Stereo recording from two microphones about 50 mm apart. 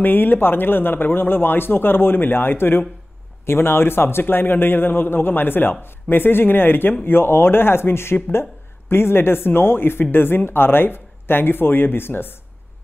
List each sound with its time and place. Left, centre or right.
0.0 s a man's voice: left